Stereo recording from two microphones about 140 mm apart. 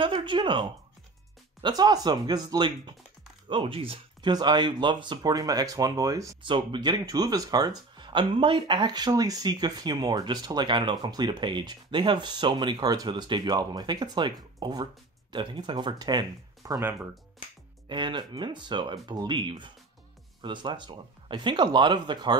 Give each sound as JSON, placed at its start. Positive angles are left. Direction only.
{"t": 0.0, "sound": "speech", "side_deg": -35}
{"t": 6.4, "sound": "speech", "side_deg": -35}
{"t": 17.8, "sound": "speech", "side_deg": -35}